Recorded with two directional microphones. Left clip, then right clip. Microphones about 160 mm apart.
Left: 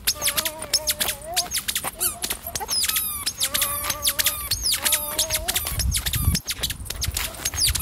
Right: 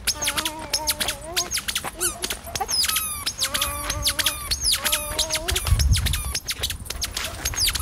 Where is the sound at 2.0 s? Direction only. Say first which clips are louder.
Right 1 dB; 10° left (ahead or behind).